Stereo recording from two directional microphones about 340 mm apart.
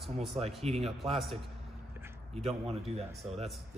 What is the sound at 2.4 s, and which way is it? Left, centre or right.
Speech, centre.